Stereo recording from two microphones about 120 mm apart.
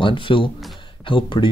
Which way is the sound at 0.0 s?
45° left (ahead or behind).